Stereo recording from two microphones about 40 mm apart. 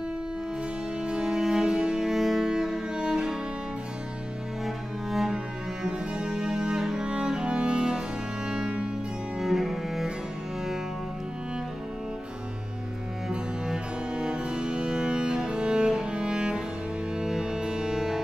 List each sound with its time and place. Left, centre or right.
1.0 s music: centre
4.6 s music: centre
5.9 s music: right
9.4 s cello: centre
14.1 s music: right